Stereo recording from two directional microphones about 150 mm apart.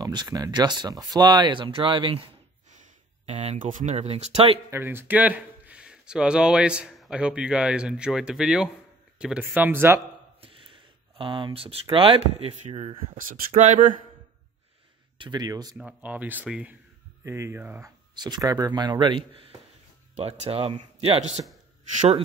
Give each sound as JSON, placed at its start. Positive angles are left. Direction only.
{"t": 0.0, "sound": "speech", "side_deg": -25}
{"t": 3.3, "sound": "speech", "side_deg": -50}
{"t": 4.6, "sound": "speech", "side_deg": -15}
{"t": 10.4, "sound": "speech", "side_deg": -35}
{"t": 12.6, "sound": "speech", "side_deg": -50}
{"t": 15.1, "sound": "speech", "side_deg": -30}
{"t": 15.8, "sound": "speech", "side_deg": -10}